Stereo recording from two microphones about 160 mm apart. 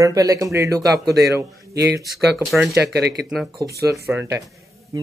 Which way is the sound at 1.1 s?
90° right.